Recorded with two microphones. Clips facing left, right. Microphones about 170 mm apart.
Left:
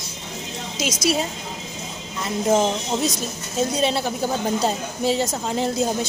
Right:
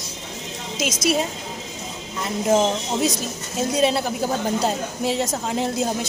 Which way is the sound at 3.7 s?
Centre (ahead or behind).